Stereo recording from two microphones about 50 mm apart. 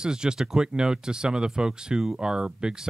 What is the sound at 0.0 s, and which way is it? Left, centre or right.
Speech, centre.